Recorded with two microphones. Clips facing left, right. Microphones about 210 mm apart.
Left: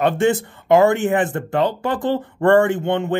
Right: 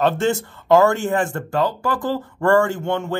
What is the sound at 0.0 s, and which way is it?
Speech, 15° left (ahead or behind).